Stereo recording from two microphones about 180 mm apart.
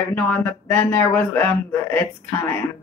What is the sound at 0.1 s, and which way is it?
A man's voice, 10° left (ahead or behind).